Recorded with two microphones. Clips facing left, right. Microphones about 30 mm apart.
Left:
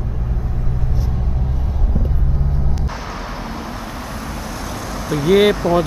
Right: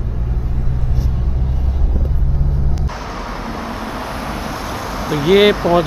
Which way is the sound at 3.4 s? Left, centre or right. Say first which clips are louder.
Right 3 dB; centre.